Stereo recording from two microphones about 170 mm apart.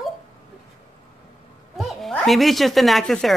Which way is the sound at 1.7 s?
Centre (ahead or behind).